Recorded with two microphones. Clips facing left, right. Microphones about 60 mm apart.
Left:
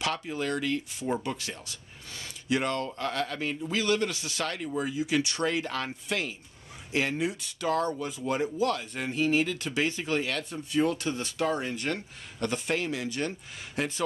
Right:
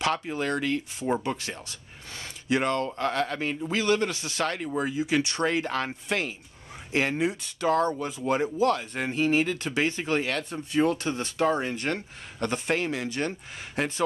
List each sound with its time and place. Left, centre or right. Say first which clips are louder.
0.0 s speech: right 3 dB; right